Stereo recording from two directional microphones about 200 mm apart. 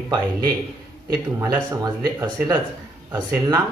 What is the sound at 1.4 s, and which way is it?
Speech, 15° right (ahead or behind).